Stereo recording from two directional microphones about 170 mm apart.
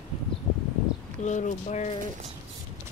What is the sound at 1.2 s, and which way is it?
Speech, 45° left (ahead or behind).